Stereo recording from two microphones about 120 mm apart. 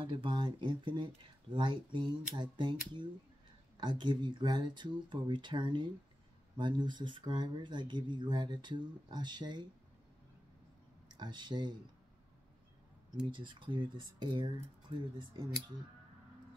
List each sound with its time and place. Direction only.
0.0 s speech: 40° right (ahead or behind)
3.7 s speech: 40° right (ahead or behind)
11.1 s speech: 40° right (ahead or behind)
13.3 s speech: 40° right (ahead or behind)